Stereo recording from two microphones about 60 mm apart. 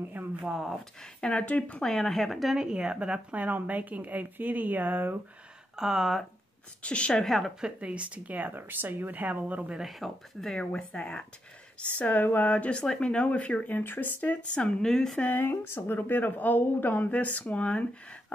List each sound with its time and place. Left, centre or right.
0.4 s speech: centre
1.2 s speech: left
1.7 s speech: centre; by 5.1 s right
5.8 s speech: centre
6.8 s speech: centre
7.2 s speech: centre
7.6 s speech: centre
9.8 s speech: centre
10.5 s speech: centre
12.0 s speech: left; by 15.1 s centre
15.1 s speech: left
15.5 s a woman's voice: left; by 17.8 s centre